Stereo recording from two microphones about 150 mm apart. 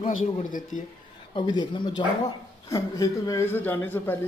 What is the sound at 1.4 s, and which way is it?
A man's voice, 30° left (ahead or behind).